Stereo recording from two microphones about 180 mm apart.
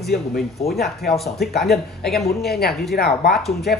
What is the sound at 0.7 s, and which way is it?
Speech, centre (ahead or behind).